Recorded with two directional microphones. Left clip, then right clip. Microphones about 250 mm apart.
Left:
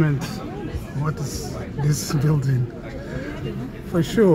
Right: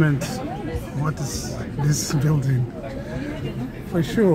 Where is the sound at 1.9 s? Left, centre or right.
Centre.